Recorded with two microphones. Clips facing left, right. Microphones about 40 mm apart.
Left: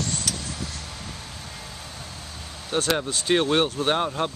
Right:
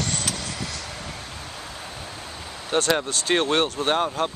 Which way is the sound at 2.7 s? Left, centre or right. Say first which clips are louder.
Right 3 dB; right.